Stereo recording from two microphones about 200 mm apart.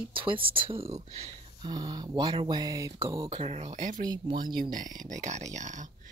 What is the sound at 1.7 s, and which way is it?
Speech, 20° right (ahead or behind).